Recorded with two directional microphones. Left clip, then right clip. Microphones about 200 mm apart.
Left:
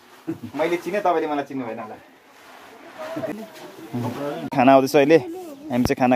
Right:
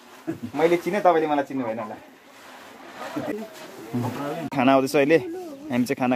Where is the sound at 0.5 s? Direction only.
35° right (ahead or behind).